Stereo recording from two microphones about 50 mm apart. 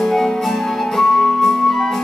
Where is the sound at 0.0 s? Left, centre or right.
Centre.